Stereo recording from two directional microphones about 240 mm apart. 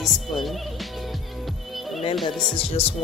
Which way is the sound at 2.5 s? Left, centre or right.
Left.